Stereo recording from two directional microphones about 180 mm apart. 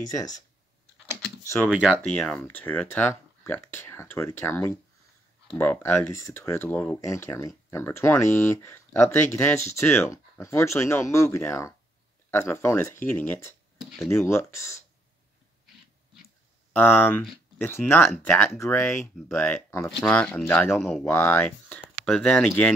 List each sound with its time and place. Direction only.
1.7 s speech: 5° right (ahead or behind)
2.0 s speech: 10° left (ahead or behind)
13.7 s a sound: centre (ahead or behind)
14.0 s speech: 15° left (ahead or behind)
16.7 s speech: 10° left (ahead or behind)